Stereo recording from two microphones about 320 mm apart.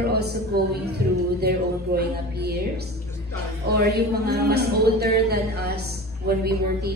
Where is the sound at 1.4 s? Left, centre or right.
Right.